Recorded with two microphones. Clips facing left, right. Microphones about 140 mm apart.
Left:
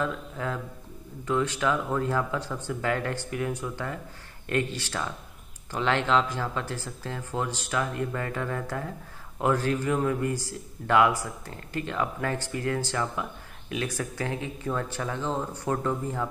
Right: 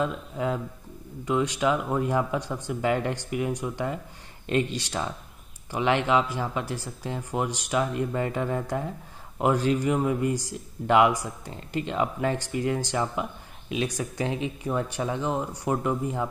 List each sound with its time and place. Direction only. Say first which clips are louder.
0.0 s speech: right 3 dB; 20° right (ahead or behind)